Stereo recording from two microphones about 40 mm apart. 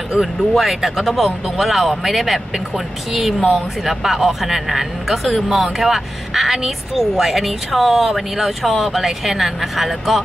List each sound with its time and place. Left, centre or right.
0.1 s speech: centre